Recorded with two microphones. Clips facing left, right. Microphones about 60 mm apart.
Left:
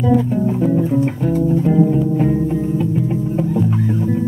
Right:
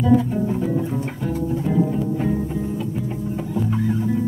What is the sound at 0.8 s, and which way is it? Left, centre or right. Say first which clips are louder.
Music: left 8 dB; centre.